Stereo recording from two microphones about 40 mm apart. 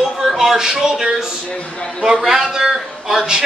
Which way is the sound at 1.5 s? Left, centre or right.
Left.